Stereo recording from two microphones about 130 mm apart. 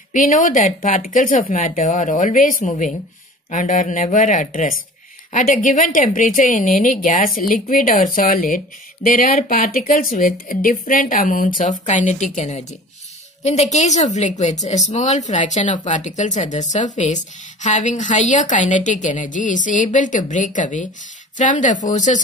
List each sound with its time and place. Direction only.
0.1 s speech: 90° left
1.5 s a woman's voice: 70° left (ahead or behind)